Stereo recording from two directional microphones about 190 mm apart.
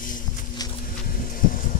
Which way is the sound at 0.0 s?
45° left (ahead or behind).